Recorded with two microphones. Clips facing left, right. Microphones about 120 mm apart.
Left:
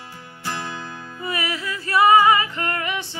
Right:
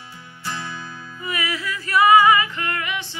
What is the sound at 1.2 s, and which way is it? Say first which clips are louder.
Music: even; 30° left (ahead or behind).